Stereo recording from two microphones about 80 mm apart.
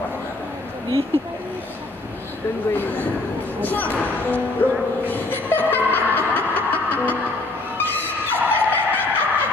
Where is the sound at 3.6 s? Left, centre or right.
Left.